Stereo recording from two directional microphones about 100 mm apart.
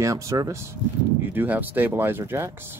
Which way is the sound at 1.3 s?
20° right (ahead or behind).